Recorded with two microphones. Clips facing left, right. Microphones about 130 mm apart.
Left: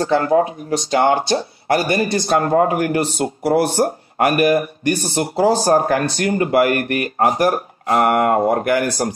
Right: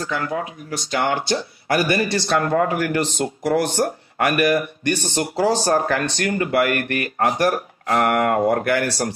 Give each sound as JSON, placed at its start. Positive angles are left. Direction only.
{"t": 0.0, "sound": "speech", "side_deg": 30}
{"t": 2.2, "sound": "speech", "side_deg": 35}